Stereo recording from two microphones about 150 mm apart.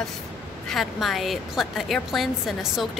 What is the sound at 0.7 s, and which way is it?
A woman's voice, centre (ahead or behind).